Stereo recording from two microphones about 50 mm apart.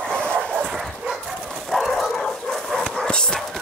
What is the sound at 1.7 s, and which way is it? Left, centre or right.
Bow-wow, centre.